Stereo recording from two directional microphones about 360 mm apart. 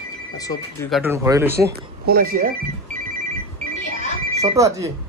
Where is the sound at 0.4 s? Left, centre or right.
Centre.